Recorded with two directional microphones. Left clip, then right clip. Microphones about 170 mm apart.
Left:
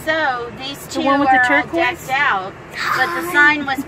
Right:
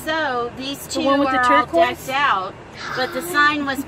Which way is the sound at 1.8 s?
75° right (ahead or behind).